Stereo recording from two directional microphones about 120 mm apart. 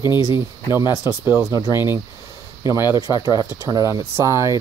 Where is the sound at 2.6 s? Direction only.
25° right (ahead or behind).